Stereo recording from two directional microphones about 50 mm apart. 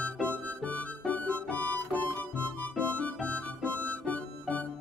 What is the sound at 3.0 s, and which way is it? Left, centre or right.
Music, left.